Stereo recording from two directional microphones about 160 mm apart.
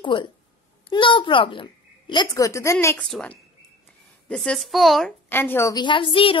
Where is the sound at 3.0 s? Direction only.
5° left (ahead or behind).